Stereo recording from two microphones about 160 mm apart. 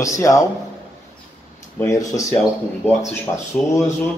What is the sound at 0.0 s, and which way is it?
Speech, 20° left (ahead or behind).